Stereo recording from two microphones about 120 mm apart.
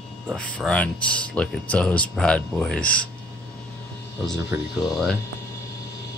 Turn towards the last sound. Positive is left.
turn(degrees=0)  # may be behind; listen again after turning